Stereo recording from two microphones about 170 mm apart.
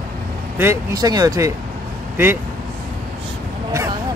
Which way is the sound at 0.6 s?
15° right (ahead or behind).